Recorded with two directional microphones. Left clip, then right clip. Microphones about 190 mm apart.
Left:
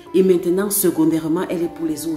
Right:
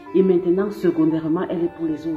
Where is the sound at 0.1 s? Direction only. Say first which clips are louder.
Left 2 dB; 25° left (ahead or behind).